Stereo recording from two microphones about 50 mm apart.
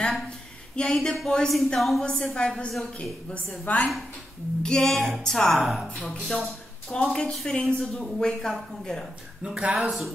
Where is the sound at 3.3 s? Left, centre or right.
Left.